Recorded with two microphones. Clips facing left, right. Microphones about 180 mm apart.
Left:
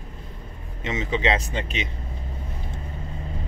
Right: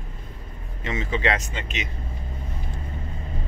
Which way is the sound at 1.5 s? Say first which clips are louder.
Left 3 dB; 30° left (ahead or behind).